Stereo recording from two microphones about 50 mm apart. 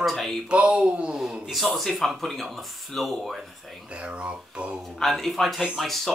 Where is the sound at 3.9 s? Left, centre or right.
Right.